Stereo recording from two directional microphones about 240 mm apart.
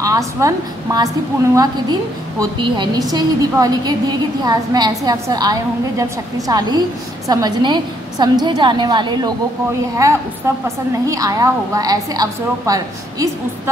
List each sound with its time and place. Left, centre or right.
0.0 s a woman's voice: centre